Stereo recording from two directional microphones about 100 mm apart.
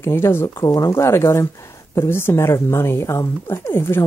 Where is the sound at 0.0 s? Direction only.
25° left (ahead or behind).